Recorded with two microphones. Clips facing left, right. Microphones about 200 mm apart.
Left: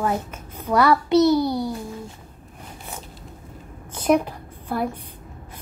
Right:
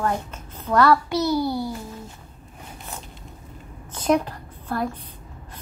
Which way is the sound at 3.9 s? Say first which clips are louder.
Left 2 dB; 10° left (ahead or behind).